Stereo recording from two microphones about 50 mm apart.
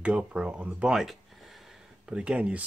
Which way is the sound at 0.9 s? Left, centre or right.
Centre.